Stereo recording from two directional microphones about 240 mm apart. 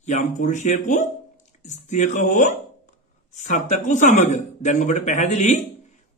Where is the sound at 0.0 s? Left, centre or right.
Left.